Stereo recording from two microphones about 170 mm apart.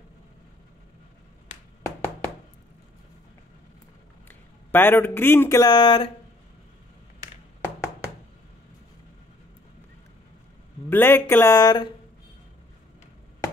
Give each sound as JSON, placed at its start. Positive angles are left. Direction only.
{"t": 4.3, "sound": "a man's voice", "side_deg": 10}
{"t": 10.9, "sound": "speech", "side_deg": 10}